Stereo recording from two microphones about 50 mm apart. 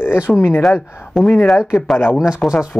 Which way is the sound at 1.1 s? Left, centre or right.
Centre.